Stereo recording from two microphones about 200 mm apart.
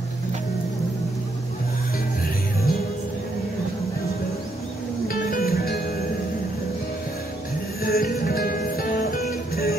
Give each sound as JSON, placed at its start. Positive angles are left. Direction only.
{"t": 5.0, "sound": "music", "side_deg": 50}
{"t": 7.8, "sound": "music", "side_deg": 50}